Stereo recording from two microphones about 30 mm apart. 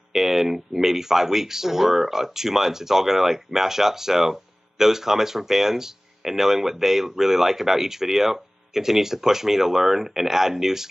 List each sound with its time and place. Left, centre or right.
0.1 s speech: centre